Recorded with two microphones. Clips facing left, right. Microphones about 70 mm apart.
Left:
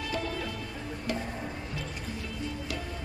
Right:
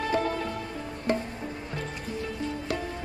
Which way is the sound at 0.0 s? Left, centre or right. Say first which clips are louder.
Right 6 dB; right.